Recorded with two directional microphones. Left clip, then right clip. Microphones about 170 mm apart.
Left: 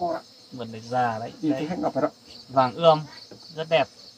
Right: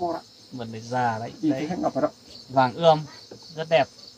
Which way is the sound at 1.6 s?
35° left (ahead or behind).